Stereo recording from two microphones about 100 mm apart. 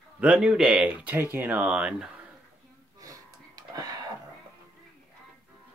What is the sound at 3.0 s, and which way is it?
Music, 35° right (ahead or behind).